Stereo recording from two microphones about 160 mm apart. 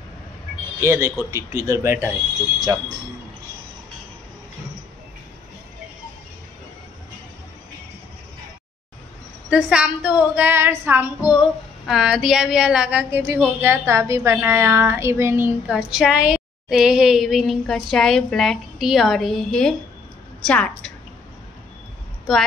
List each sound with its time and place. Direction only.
0.7 s a woman's voice: 15° right (ahead or behind)
9.5 s a woman's voice: 5° right (ahead or behind)
15.7 s a woman's voice: 5° right (ahead or behind)